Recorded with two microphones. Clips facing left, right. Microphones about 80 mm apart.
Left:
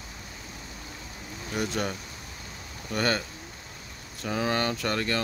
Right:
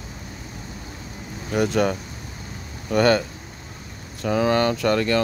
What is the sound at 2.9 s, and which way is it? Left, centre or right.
Speech, right.